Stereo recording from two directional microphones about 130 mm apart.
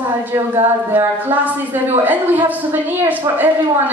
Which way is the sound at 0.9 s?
15° right (ahead or behind).